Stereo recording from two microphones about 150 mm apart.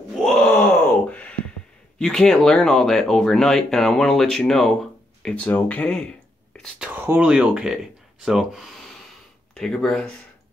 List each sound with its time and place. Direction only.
0.2 s groan: 5° left (ahead or behind)
2.0 s speech: 5° left (ahead or behind)
6.8 s speech: 10° right (ahead or behind); by 10.1 s 5° left (ahead or behind)